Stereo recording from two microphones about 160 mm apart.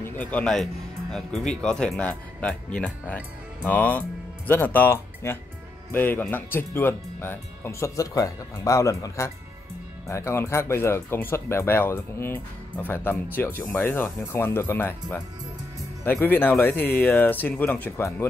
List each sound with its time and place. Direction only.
0.0 s speech: 10° left (ahead or behind)